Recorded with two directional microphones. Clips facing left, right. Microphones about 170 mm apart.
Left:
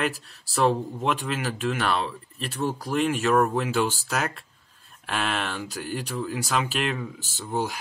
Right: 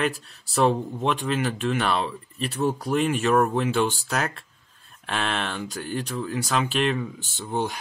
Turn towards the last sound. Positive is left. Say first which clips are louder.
# right 1 dB
turn(degrees=5)  # may be behind; listen again after turning